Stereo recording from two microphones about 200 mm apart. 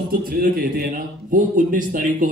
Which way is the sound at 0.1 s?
45° right (ahead or behind).